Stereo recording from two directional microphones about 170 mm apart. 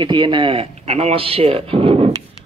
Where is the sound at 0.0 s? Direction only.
30° right (ahead or behind).